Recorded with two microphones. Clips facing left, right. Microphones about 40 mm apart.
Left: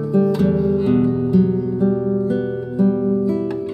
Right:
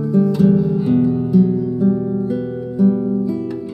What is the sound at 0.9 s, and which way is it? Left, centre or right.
Guitar, left.